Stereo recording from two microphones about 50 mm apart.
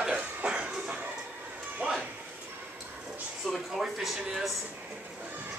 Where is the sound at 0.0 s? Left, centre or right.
Centre.